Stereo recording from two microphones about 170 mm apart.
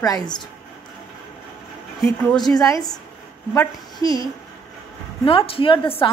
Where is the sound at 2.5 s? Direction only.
20° left (ahead or behind).